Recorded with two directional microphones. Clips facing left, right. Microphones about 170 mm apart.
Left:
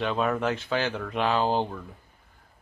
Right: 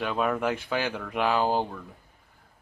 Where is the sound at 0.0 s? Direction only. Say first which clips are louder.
Left 1 dB; 10° right (ahead or behind).